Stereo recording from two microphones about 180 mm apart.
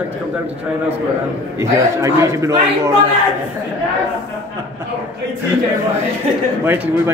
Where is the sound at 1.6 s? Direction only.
15° right (ahead or behind).